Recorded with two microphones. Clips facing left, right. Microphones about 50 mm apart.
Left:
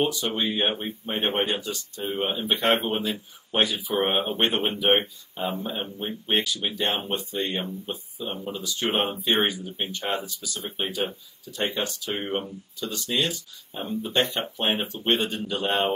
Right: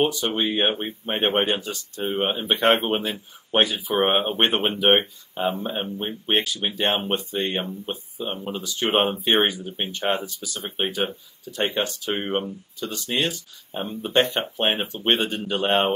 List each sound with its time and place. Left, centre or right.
0.0 s speech: right